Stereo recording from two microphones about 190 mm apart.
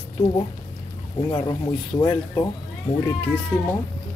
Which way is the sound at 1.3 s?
20° left (ahead or behind).